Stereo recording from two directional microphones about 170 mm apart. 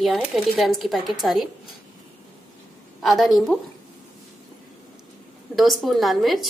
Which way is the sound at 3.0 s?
Centre (ahead or behind).